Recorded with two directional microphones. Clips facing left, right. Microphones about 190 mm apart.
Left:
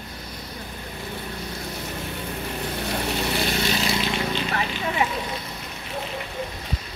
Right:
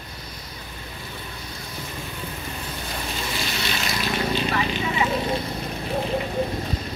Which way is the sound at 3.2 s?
60° left (ahead or behind).